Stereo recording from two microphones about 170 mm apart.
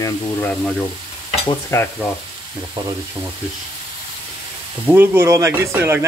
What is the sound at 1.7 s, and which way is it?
Speech, 15° left (ahead or behind).